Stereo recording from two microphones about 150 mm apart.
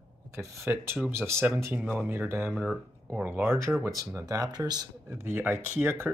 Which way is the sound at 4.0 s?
20° right (ahead or behind).